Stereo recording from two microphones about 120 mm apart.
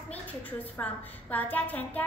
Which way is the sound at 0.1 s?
15° left (ahead or behind).